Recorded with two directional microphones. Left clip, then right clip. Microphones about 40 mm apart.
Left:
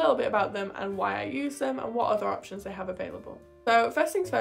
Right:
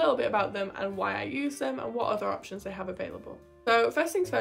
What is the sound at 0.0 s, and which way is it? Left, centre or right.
Speech, left.